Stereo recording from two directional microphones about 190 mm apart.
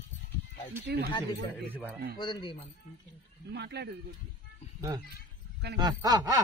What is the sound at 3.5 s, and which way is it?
Speech, 60° right (ahead or behind).